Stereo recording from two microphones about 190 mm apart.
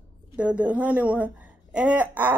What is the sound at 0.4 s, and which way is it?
Speech, 5° right (ahead or behind).